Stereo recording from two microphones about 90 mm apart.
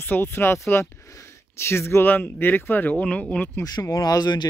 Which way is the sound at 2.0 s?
20° left (ahead or behind).